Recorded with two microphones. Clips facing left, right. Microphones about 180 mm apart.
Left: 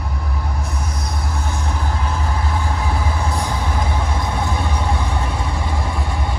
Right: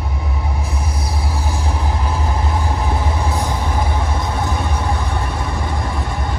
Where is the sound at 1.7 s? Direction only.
Centre (ahead or behind).